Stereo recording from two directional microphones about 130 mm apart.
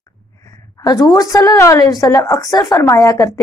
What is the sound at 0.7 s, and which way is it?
A woman's voice, 25° left (ahead or behind).